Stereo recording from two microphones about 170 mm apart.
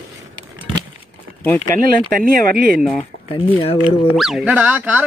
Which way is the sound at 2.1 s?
60° right (ahead or behind).